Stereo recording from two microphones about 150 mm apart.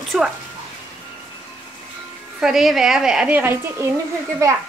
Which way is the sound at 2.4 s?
5° right (ahead or behind).